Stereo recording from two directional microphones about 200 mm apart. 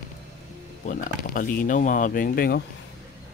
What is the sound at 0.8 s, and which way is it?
Speech, 45° left (ahead or behind).